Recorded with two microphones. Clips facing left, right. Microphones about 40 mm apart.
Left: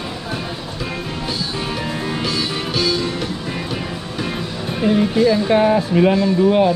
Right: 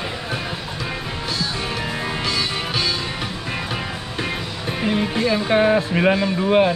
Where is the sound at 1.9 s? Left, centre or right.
Centre.